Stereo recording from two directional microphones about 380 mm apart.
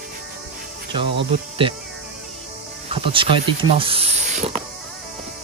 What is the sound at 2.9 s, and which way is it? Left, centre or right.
Music, centre.